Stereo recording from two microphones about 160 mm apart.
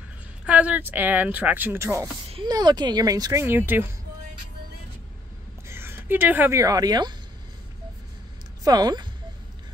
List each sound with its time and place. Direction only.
0.5 s speech: 10° right (ahead or behind)
5.7 s speech: 15° right (ahead or behind)
8.6 s speech: 25° right (ahead or behind)